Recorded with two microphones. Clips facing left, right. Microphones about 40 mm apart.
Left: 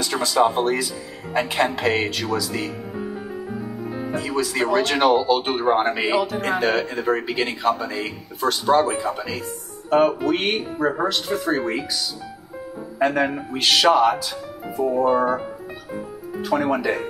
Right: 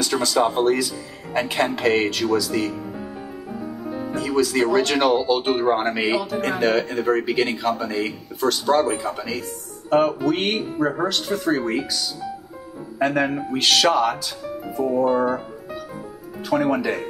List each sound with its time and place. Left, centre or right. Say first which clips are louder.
0.0 s speech: left 1 dB; centre
4.1 s speech: right 4 dB; centre
8.4 s speech: left 1 dB; centre
13.0 s speech: even; centre
16.4 s speech: even; centre